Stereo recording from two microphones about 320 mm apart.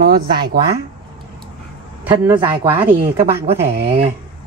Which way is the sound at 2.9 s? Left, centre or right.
Right.